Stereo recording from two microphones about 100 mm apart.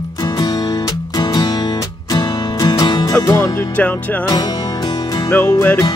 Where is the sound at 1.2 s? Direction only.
45° left (ahead or behind).